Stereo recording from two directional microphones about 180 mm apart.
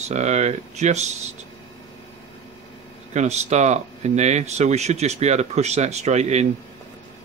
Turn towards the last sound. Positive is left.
turn(degrees=-40)  # may be behind; listen again after turning